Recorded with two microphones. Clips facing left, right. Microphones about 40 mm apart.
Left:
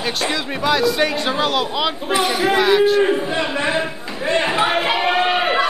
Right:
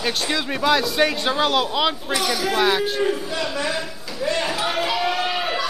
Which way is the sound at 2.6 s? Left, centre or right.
Centre.